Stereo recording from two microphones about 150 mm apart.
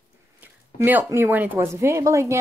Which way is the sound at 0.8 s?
15° right (ahead or behind).